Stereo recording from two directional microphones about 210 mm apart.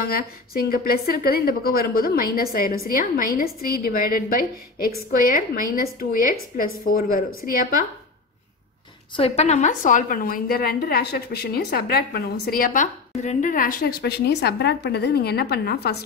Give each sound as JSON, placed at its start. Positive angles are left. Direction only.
{"t": 0.1, "sound": "a woman's voice", "side_deg": 45}
{"t": 9.1, "sound": "a woman's voice", "side_deg": 30}